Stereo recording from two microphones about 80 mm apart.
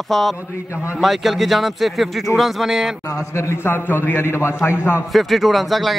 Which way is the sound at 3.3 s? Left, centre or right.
Left.